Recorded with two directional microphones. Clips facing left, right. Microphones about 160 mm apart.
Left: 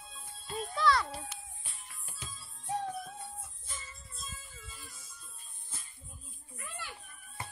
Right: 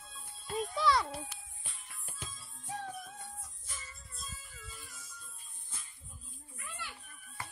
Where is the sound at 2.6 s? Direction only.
35° left (ahead or behind).